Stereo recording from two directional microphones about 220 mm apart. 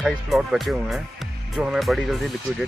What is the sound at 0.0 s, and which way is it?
Speech, centre (ahead or behind).